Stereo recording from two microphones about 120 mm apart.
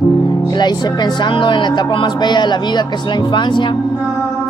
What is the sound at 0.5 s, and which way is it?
Speech, 35° left (ahead or behind).